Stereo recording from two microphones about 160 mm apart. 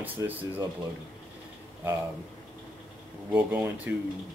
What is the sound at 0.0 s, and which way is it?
Speech, 10° right (ahead or behind).